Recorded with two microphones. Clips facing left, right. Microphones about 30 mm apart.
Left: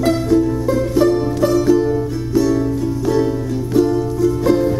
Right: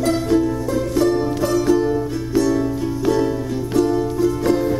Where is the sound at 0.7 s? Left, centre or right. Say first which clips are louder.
Left 3 dB; centre.